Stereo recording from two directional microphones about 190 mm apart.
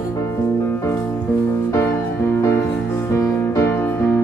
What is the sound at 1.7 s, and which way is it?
Music, 10° left (ahead or behind).